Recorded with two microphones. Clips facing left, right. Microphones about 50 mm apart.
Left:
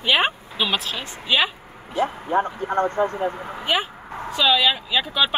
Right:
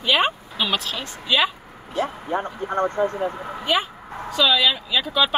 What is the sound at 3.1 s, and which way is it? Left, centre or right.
Speech, left.